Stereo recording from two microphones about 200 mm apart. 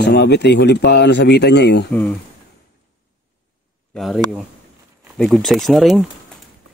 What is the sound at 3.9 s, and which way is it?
Speech, centre (ahead or behind).